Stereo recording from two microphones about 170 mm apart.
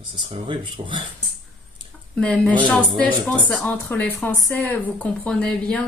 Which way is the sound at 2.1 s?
5° left (ahead or behind).